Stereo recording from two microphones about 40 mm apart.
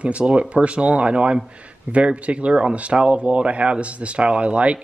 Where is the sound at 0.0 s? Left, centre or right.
Right.